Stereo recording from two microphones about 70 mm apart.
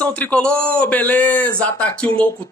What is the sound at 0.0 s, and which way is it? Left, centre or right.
A man's voice, centre.